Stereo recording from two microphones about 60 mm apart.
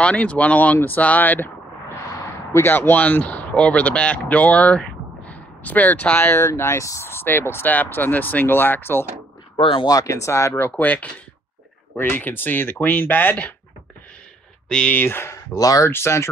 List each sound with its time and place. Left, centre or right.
0.0 s speech: left
2.6 s speech: left
6.5 s speech: left
9.8 s speech: left
10.8 s speech: left
15.0 s speech: left
15.3 s speech: left
15.9 s speech: left